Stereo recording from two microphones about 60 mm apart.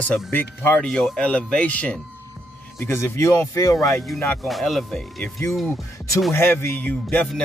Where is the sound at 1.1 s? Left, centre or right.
Left.